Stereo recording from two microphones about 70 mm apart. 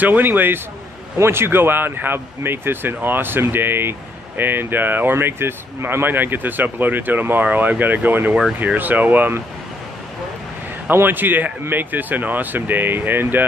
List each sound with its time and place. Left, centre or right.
0.0 s a man's voice: right
10.9 s speech: right